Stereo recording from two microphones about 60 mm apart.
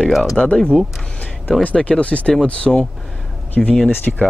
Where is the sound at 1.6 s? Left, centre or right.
Left.